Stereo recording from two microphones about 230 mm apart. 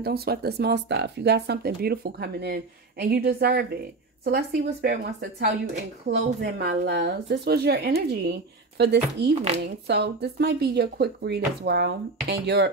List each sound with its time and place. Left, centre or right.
0.0 s speech: right